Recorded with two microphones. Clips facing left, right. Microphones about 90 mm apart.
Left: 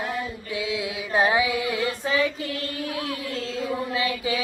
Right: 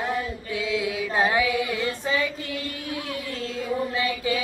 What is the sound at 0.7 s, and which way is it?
Carnatic music, 15° left (ahead or behind).